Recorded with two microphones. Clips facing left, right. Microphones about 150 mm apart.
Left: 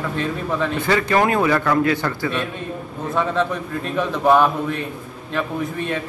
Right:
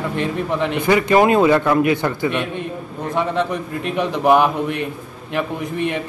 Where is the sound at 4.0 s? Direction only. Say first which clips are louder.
Right 1 dB; 15° right (ahead or behind).